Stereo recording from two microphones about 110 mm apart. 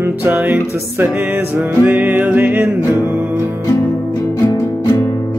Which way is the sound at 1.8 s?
10° right (ahead or behind).